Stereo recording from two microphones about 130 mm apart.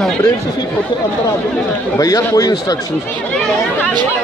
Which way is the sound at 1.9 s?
25° left (ahead or behind).